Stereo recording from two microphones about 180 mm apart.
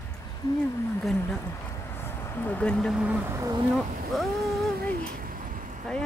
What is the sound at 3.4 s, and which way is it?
Speech, 25° right (ahead or behind).